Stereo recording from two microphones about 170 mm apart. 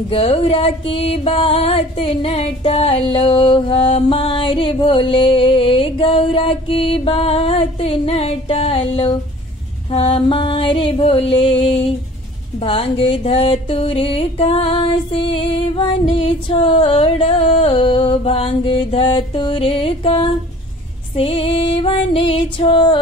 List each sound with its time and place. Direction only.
0.1 s music: 35° left (ahead or behind)